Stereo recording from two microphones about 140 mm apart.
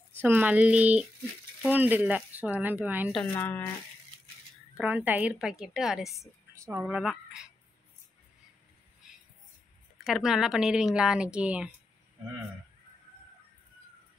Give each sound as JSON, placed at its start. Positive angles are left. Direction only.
{"t": 0.2, "sound": "speech", "side_deg": -15}
{"t": 3.1, "sound": "speech", "side_deg": 5}
{"t": 4.7, "sound": "a woman's voice", "side_deg": -10}
{"t": 6.5, "sound": "speech", "side_deg": -20}
{"t": 6.8, "sound": "a woman's voice", "side_deg": -5}
{"t": 9.0, "sound": "a sound", "side_deg": -5}
{"t": 10.0, "sound": "a woman's voice", "side_deg": -5}